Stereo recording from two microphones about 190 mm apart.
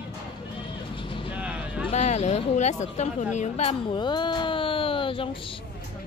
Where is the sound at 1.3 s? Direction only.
5° right (ahead or behind).